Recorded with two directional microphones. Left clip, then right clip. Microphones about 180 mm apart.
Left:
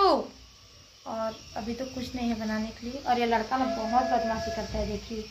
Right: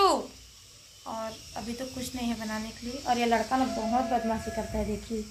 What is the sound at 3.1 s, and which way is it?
Speech, 35° right (ahead or behind).